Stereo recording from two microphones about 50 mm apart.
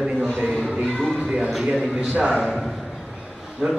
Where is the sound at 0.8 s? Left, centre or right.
Centre.